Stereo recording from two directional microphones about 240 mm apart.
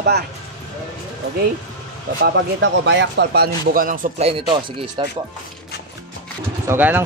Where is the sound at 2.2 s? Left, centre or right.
Right.